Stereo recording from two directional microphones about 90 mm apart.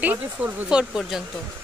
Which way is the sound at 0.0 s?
20° right (ahead or behind).